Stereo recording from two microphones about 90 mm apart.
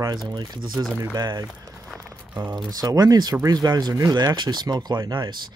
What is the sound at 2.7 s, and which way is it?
Speech, 45° right (ahead or behind).